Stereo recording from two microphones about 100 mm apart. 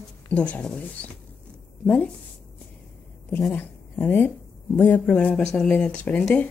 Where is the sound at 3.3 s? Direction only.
20° left (ahead or behind).